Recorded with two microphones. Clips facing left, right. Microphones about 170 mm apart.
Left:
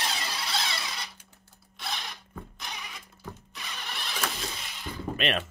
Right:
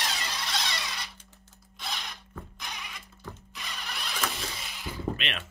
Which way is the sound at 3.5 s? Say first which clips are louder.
Right 1 dB; centre (ahead or behind).